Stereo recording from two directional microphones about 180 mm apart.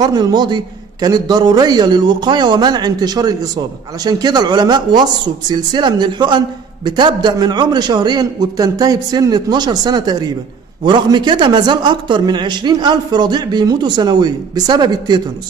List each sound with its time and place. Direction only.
0.0 s a man's voice: 20° right (ahead or behind)